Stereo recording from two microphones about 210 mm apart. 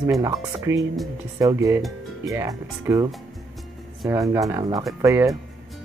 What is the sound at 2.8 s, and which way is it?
Speech, 15° right (ahead or behind).